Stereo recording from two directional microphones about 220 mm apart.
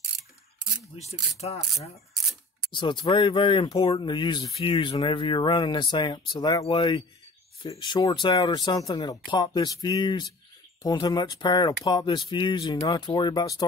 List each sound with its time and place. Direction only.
2.7 s speech: 20° left (ahead or behind)